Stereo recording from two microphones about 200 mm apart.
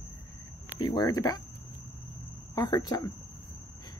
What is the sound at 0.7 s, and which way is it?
Speech, 20° left (ahead or behind).